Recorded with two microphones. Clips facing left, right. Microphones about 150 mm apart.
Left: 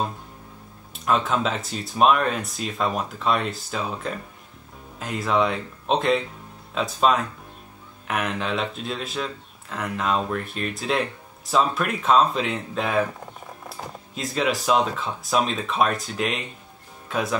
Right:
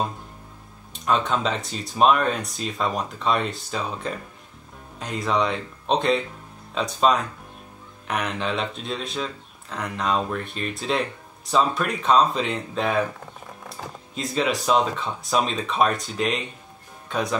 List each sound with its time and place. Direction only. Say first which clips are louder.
0.9 s speech: even; centre (ahead or behind)